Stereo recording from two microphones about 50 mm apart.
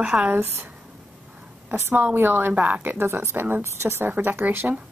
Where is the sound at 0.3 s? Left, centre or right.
Right.